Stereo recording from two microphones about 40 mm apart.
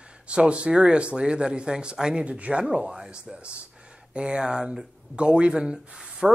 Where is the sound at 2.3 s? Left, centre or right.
Right.